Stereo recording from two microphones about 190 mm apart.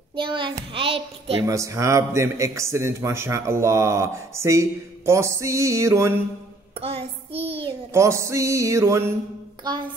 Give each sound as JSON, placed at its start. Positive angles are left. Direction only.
{"t": 0.1, "sound": "a child's voice", "side_deg": -25}
{"t": 1.4, "sound": "a man's voice", "side_deg": -15}
{"t": 6.8, "sound": "child singing", "side_deg": -30}
{"t": 7.9, "sound": "a man's voice", "side_deg": -15}